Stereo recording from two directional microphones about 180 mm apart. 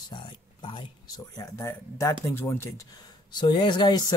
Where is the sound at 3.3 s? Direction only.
25° left (ahead or behind).